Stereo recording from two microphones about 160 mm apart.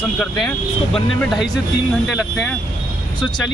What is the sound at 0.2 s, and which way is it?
Speech, 5° left (ahead or behind).